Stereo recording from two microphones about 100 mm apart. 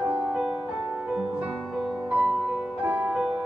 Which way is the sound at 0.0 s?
15° right (ahead or behind).